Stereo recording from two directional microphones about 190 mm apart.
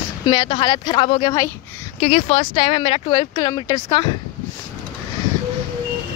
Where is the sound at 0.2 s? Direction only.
25° left (ahead or behind).